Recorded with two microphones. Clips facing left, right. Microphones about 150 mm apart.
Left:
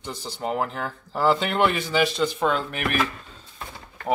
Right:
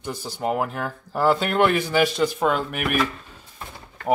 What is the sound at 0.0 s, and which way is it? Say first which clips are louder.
Speech: right 3 dB; 10° right (ahead or behind).